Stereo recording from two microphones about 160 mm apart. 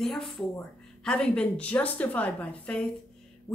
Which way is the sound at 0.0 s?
Centre (ahead or behind).